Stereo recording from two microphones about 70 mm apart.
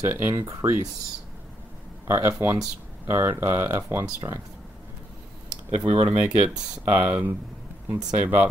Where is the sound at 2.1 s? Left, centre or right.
Right.